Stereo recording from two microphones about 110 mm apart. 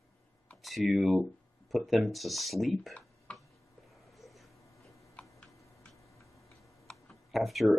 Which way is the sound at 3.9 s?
Centre (ahead or behind).